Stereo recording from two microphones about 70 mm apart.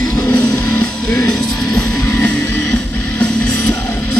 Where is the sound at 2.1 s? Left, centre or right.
Left.